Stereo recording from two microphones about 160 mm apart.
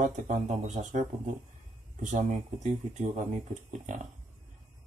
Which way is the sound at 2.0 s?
50° right (ahead or behind).